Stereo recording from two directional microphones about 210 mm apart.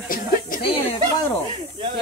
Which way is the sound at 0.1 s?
40° left (ahead or behind).